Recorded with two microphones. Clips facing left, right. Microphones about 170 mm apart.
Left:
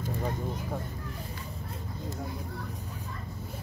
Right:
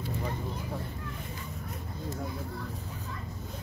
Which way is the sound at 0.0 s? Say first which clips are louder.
Left 2 dB; 45° left (ahead or behind).